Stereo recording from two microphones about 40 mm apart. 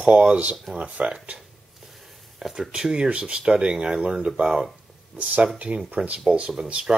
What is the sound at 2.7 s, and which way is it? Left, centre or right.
Speech, centre.